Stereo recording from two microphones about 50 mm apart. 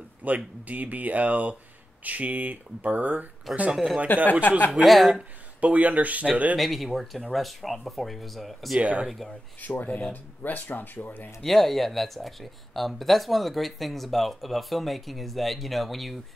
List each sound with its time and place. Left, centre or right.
0.2 s speech: right
3.7 s speech: centre
4.3 s speech: left
4.8 s speech: centre
5.6 s speech: right
6.6 s speech: centre
8.7 s speech: right
9.6 s speech: left
11.4 s speech: centre